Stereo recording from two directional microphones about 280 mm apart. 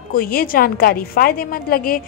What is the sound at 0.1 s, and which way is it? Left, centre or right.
A woman's voice, left.